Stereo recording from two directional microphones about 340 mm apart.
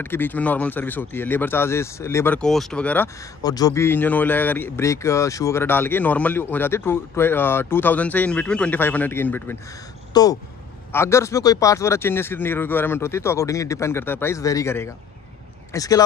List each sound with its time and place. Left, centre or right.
0.0 s speech: centre